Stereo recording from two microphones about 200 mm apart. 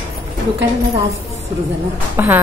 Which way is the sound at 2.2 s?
10° right (ahead or behind).